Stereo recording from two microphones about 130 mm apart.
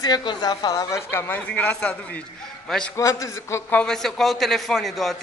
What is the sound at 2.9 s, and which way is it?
Speech, 25° left (ahead or behind).